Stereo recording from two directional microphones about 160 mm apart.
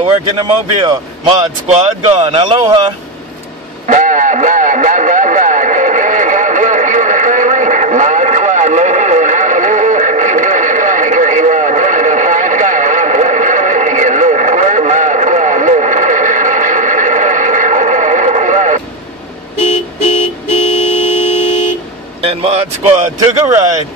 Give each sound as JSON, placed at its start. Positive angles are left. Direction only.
{"t": 0.0, "sound": "speech", "side_deg": -30}
{"t": 3.8, "sound": "radio", "side_deg": -50}
{"t": 20.5, "sound": "vehicle", "side_deg": 35}
{"t": 22.2, "sound": "speech", "side_deg": -35}
{"t": 23.4, "sound": "speech", "side_deg": -20}